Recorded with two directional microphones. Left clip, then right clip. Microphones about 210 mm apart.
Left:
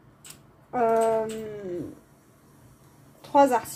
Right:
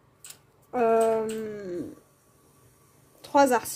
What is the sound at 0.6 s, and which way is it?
Speech, 15° right (ahead or behind).